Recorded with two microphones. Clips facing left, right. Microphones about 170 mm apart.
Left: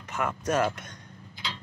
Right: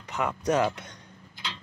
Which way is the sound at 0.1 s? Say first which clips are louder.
Right 2 dB; 15° right (ahead or behind).